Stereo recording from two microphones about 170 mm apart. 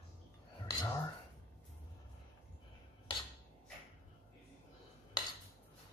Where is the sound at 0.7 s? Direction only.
20° left (ahead or behind).